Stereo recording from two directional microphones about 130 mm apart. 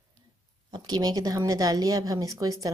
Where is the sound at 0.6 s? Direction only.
30° right (ahead or behind).